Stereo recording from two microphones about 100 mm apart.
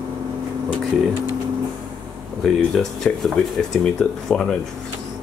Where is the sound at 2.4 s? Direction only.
5° left (ahead or behind).